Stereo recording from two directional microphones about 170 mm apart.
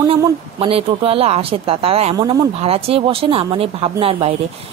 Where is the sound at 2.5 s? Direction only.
35° right (ahead or behind).